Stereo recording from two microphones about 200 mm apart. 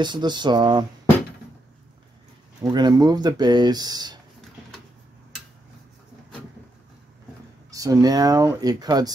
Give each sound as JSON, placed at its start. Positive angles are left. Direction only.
{"t": 0.0, "sound": "speech", "side_deg": -20}
{"t": 2.6, "sound": "speech", "side_deg": -20}
{"t": 7.7, "sound": "speech", "side_deg": -15}